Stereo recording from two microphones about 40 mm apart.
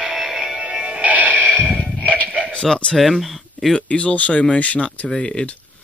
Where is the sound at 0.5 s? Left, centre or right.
Right.